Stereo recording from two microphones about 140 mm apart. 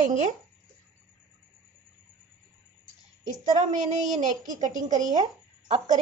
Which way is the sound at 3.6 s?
60° right (ahead or behind).